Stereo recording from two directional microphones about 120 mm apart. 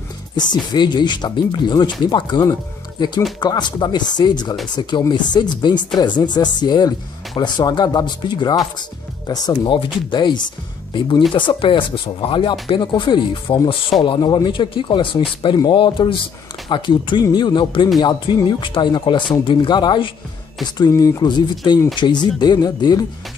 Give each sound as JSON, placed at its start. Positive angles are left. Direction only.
{"t": 0.4, "sound": "speech", "side_deg": 40}
{"t": 10.9, "sound": "speech", "side_deg": 40}
{"t": 21.2, "sound": "speech", "side_deg": 40}